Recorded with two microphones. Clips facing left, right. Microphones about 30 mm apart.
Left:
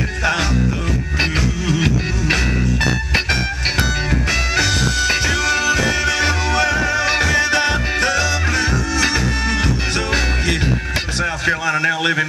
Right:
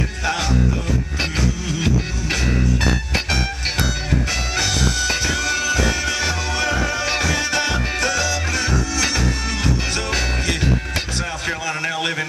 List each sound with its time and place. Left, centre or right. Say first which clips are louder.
0.2 s music: left 3 dB; left
7.1 s music: left 4 dB; centre
7.3 s music: left 5 dB; left
7.6 s music: left 4 dB; centre
8.0 s music: left 3 dB; left
11.2 s a sound: left 6 dB; centre